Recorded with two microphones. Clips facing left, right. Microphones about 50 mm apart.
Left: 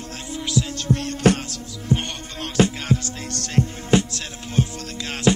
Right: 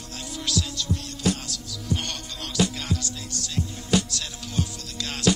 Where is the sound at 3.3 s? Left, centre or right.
Left.